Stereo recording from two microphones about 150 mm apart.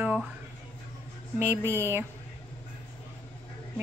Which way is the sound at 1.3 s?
15° right (ahead or behind).